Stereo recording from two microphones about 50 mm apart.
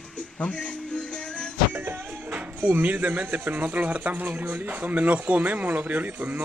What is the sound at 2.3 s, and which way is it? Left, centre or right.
Speech, right.